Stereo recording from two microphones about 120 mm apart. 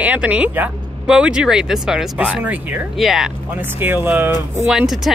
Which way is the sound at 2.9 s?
Centre (ahead or behind).